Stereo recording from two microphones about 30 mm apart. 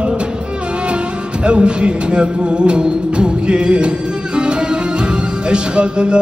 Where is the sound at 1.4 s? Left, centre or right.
Right.